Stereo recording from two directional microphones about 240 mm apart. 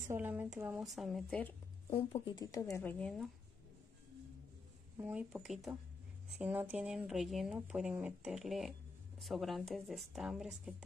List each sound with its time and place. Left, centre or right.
0.1 s speech: centre
2.0 s speech: left; by 3.3 s centre
4.9 s speech: centre